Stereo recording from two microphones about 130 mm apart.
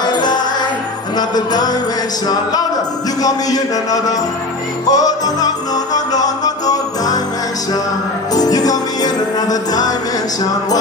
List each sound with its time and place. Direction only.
0.0 s music: 35° left (ahead or behind)
3.2 s a man's voice: 30° left (ahead or behind)
5.9 s music: 30° left (ahead or behind)
8.4 s music: 30° left (ahead or behind)